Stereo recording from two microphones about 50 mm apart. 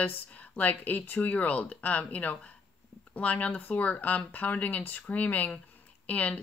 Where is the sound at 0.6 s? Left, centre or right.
Left.